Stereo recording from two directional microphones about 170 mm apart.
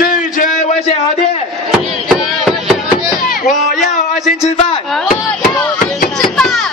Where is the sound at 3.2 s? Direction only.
50° left (ahead or behind).